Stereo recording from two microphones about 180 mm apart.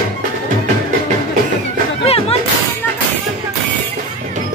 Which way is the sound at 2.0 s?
35° left (ahead or behind).